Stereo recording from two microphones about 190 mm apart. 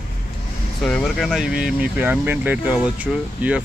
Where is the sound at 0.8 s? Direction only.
Centre (ahead or behind).